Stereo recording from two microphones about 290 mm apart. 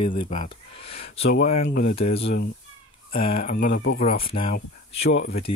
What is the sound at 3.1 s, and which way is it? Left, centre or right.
Speech, left.